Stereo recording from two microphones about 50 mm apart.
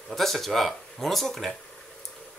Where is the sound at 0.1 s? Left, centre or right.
Centre.